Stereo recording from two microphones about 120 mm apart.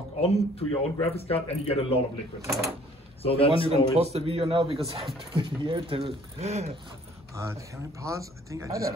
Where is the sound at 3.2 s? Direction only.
55° left (ahead or behind).